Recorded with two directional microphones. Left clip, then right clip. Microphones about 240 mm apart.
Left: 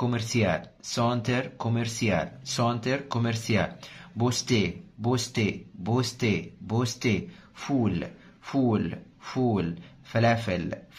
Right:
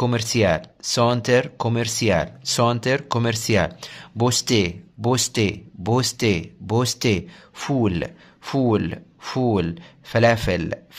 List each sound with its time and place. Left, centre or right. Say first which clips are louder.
0.0 s speech: right 7 dB; right